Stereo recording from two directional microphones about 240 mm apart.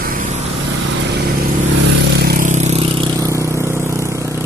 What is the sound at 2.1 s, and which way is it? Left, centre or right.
Vehicle, right.